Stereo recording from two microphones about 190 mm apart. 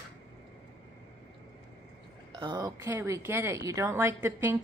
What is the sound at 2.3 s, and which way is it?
A woman's voice, 25° right (ahead or behind).